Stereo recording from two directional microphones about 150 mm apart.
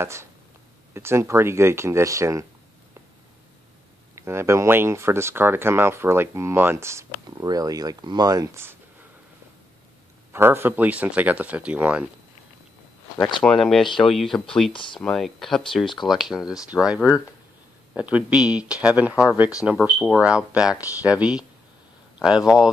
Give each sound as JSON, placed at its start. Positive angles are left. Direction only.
{"t": 0.0, "sound": "speech", "side_deg": -15}
{"t": 4.1, "sound": "speech", "side_deg": -20}
{"t": 10.3, "sound": "speech", "side_deg": -15}
{"t": 13.6, "sound": "speech", "side_deg": 0}
{"t": 14.7, "sound": "speech", "side_deg": 35}
{"t": 15.0, "sound": "speech", "side_deg": 0}